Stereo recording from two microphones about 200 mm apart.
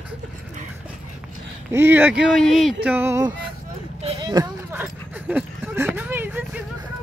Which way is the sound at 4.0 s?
30° right (ahead or behind).